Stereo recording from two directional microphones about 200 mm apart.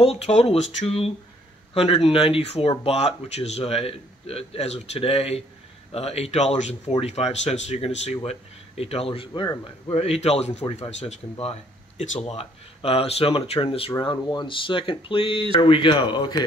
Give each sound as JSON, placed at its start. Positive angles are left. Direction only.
{"t": 0.0, "sound": "speech", "side_deg": 30}